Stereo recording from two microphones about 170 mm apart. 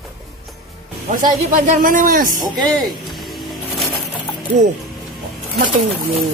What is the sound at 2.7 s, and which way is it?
Music, centre (ahead or behind).